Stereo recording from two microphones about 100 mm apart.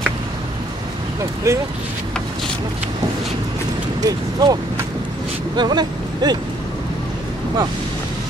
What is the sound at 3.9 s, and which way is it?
Speech, 40° right (ahead or behind).